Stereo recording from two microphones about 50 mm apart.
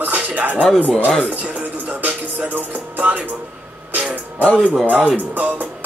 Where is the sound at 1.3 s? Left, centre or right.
Right.